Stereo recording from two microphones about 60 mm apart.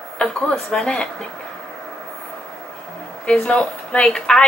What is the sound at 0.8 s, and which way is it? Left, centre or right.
Speech, centre.